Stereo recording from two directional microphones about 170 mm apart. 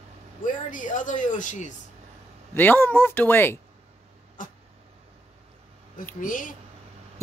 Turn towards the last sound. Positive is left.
turn(degrees=50)  # may be behind; listen again after turning